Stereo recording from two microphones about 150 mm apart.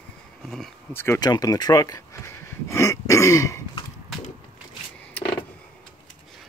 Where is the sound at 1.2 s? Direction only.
25° left (ahead or behind).